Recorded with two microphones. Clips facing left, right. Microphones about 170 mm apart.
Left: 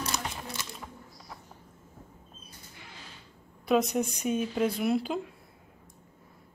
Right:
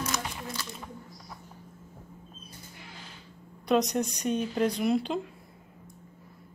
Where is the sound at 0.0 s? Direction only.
30° left (ahead or behind).